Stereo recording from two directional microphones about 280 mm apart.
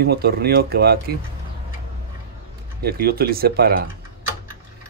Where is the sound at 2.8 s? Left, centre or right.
Right.